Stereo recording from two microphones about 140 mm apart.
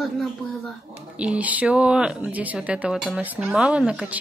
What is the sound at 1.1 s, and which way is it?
Speech, 10° right (ahead or behind).